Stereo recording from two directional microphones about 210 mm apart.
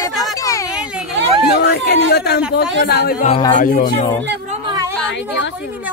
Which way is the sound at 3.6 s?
40° left (ahead or behind).